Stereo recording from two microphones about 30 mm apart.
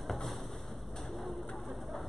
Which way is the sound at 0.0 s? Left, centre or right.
Centre.